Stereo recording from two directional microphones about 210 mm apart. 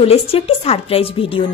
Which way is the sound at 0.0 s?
30° left (ahead or behind).